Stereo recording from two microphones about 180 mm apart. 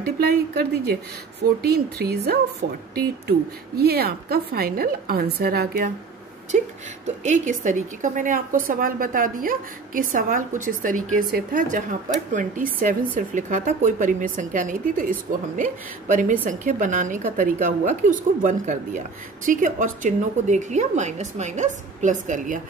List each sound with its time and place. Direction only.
0.0 s a woman's voice: 60° right (ahead or behind)
7.2 s speech: 45° right (ahead or behind)